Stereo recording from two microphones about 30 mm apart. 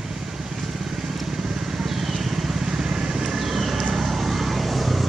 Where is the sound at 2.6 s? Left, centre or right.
Right.